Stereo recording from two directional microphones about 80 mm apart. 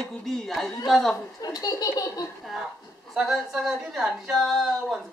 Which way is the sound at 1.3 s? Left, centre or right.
Left.